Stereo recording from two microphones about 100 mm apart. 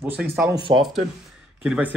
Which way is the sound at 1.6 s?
10° right (ahead or behind).